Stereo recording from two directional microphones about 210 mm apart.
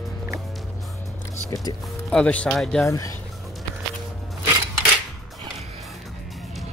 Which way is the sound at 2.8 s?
15° left (ahead or behind).